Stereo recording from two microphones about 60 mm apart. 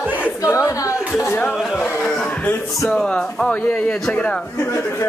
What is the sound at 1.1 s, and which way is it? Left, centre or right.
Speech, left.